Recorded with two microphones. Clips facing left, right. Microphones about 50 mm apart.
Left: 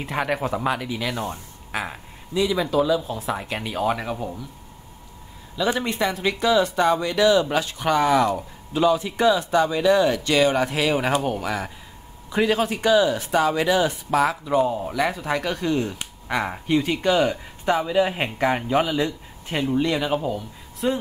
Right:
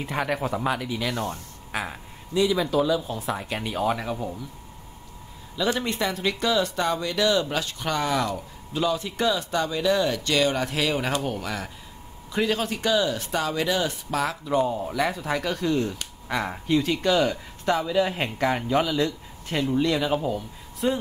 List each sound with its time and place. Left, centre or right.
0.0 s speech: centre
5.6 s speech: centre